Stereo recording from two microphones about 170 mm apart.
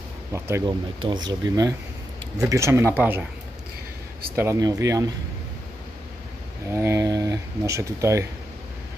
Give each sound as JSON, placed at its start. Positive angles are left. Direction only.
{"t": 0.3, "sound": "speech", "side_deg": -15}
{"t": 1.0, "sound": "speech", "side_deg": -25}
{"t": 4.4, "sound": "speech", "side_deg": -20}
{"t": 6.7, "sound": "speech", "side_deg": -15}